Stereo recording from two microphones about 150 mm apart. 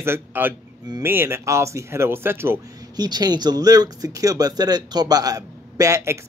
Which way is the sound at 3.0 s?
25° right (ahead or behind).